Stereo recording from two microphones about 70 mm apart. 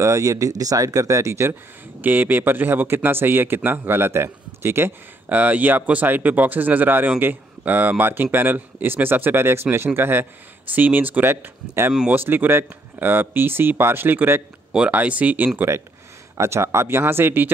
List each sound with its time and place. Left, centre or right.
0.0 s speech: right
2.0 s speech: right
5.3 s speech: right
14.7 s speech: centre